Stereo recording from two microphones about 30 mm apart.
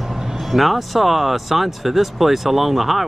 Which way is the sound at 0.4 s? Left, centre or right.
Centre.